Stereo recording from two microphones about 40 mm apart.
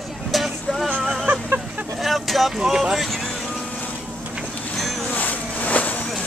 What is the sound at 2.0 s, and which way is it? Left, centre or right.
Vehicle, centre.